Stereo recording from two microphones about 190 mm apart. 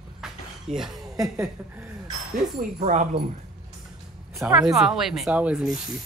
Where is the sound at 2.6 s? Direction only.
40° right (ahead or behind).